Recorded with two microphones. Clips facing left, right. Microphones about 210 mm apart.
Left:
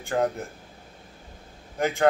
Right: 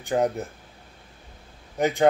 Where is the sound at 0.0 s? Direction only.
20° right (ahead or behind).